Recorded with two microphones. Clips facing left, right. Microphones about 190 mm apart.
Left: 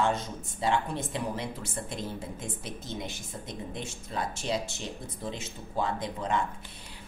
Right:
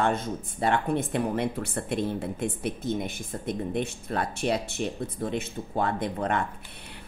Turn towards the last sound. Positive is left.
turn(degrees=-60)  # may be behind; listen again after turning